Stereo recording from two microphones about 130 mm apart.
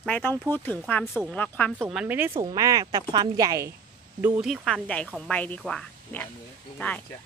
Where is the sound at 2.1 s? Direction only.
15° right (ahead or behind).